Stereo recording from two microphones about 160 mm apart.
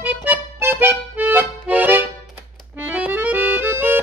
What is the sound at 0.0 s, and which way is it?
Accordion, 15° right (ahead or behind).